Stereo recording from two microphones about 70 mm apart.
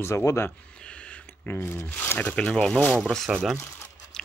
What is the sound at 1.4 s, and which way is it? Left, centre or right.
Speech, left.